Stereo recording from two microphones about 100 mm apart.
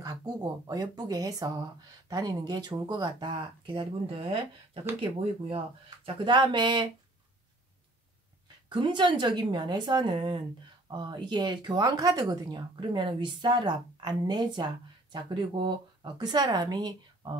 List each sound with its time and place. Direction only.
0.0 s speech: 40° right (ahead or behind); by 4.4 s 65° right (ahead or behind)
6.0 s speech: 55° right (ahead or behind)
8.6 s speech: 50° right (ahead or behind)
12.8 s speech: 55° right (ahead or behind)